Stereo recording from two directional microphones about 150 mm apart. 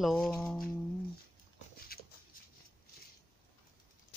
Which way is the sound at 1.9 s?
85° left.